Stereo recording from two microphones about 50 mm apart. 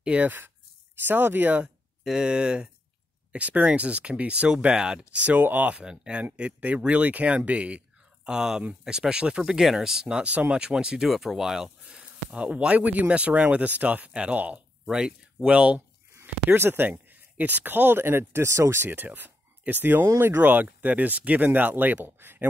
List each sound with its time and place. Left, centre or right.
0.0 s speech: right
1.0 s speech: right
2.0 s speech: centre
5.2 s speech: right
5.8 s speech: centre
8.4 s speech: centre; by 14.6 s right
14.9 s speech: centre
16.4 s speech: right
18.9 s speech: right